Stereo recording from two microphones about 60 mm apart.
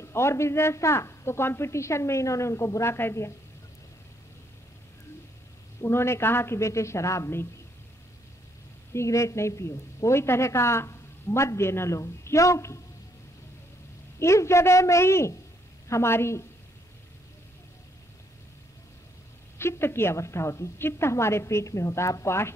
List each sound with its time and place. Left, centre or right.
0.0 s a woman's voice: left
5.8 s a woman's voice: left
8.9 s a woman's voice: left
14.2 s a woman's voice: left
19.6 s a woman's voice: left